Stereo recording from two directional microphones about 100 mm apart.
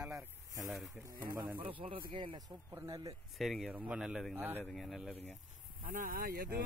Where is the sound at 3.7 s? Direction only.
15° right (ahead or behind).